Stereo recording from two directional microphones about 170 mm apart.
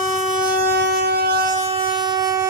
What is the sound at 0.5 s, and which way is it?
Train, 75° right (ahead or behind).